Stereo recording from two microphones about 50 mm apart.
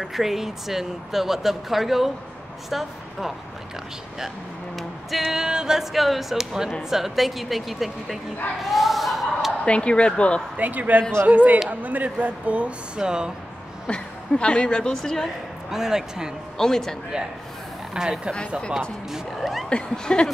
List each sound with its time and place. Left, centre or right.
0.0 s speech: centre
4.7 s music: centre
5.4 s speech: centre
8.6 s a sound: centre
9.7 s speech: left
10.6 s a man's voice: right; by 13.3 s centre
13.8 s a woman's voice: centre
15.7 s speech: centre
16.5 s a woman's voice: centre
17.9 s speech: centre
19.1 s speech: centre
19.7 s a woman's voice: centre